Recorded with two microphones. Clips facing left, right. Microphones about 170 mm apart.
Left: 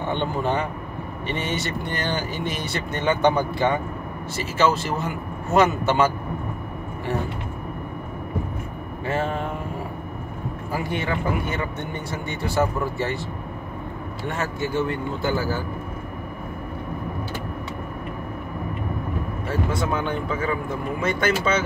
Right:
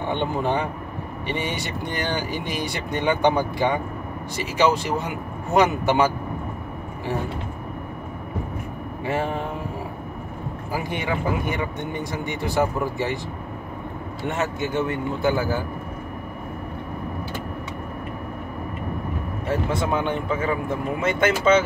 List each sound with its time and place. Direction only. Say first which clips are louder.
0.1 s speech: right 1 dB; 15° right (ahead or behind)
9.0 s speech: even; 15° right (ahead or behind)
10.7 s speech: even; 15° right (ahead or behind)
14.3 s a man's voice: right 1 dB; 20° right (ahead or behind)
19.9 s a man's voice: right 2 dB; 20° right (ahead or behind)